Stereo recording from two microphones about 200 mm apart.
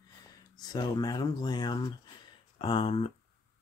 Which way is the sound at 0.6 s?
20° left (ahead or behind).